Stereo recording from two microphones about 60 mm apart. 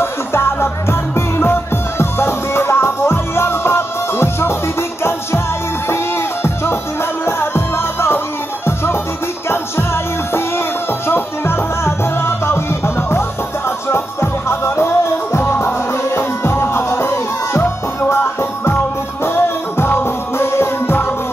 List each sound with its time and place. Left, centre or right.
0.0 s music: left
6.4 s music: left
11.1 s music: left